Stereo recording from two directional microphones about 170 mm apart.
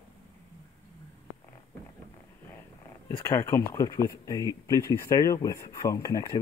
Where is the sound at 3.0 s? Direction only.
20° left (ahead or behind).